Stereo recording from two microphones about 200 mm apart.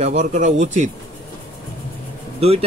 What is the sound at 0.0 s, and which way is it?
Speech, 35° right (ahead or behind).